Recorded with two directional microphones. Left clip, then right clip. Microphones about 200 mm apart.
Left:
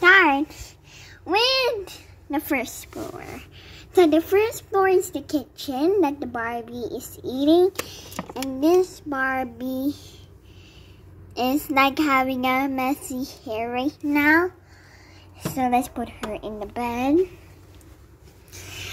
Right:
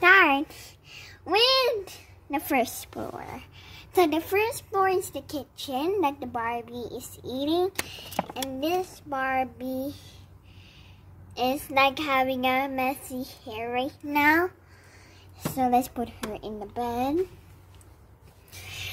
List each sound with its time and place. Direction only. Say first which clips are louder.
0.0 s a sound: left 3 dB; 10° right (ahead or behind)
2.4 s speech: even; 25° right (ahead or behind)
3.3 s a woman's voice: left 2 dB; 15° right (ahead or behind); by 10.1 s 5° left (ahead or behind)
11.3 s a woman's voice: left 3 dB; 5° left (ahead or behind)
14.1 s speech: left 3 dB; 20° right (ahead or behind)
15.5 s speech: left 2 dB; centre (ahead or behind)
16.7 s a woman's voice: left 5 dB; 5° left (ahead or behind)
18.5 s rub: left 1 dB; centre (ahead or behind)